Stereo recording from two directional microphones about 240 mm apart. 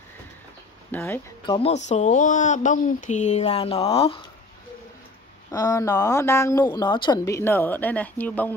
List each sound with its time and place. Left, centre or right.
0.9 s a woman's voice: centre
1.4 s speech: left
5.5 s a woman's voice: centre